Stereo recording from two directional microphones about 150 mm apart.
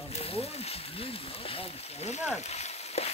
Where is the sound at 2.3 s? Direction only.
45° left (ahead or behind).